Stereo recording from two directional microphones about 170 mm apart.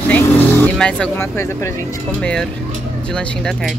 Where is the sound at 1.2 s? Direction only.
15° left (ahead or behind).